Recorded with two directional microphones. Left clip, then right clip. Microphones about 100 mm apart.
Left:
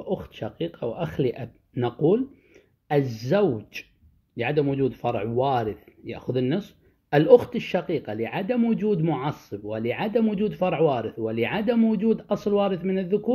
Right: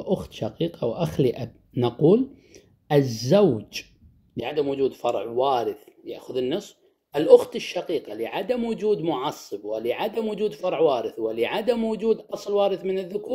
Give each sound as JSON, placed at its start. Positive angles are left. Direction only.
{"t": 0.0, "sound": "speech", "side_deg": -15}